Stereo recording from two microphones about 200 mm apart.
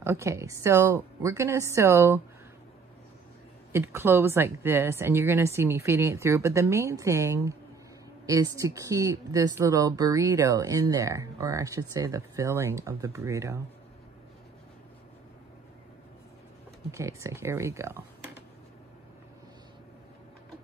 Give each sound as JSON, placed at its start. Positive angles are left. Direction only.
{"t": 0.0, "sound": "speech", "side_deg": -15}
{"t": 3.7, "sound": "speech", "side_deg": -10}
{"t": 16.9, "sound": "speech", "side_deg": -15}